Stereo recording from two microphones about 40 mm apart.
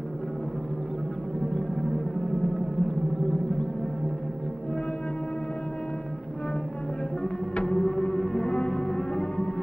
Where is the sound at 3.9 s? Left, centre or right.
Centre.